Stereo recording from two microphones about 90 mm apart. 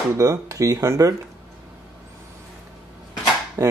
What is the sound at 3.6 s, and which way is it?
Speech, 35° right (ahead or behind).